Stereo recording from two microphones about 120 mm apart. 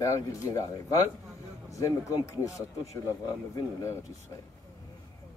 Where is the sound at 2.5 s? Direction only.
25° left (ahead or behind).